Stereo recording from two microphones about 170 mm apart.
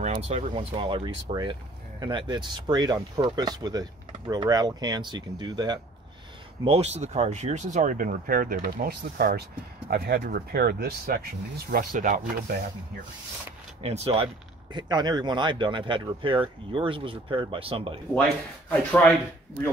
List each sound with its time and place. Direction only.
0.0 s speech: 40° right (ahead or behind); by 5.8 s 25° right (ahead or behind)
6.6 s speech: 40° right (ahead or behind)
13.8 s speech: 35° right (ahead or behind)
18.7 s speech: 10° left (ahead or behind)